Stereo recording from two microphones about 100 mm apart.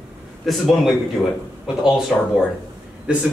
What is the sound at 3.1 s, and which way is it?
Speech, 10° right (ahead or behind).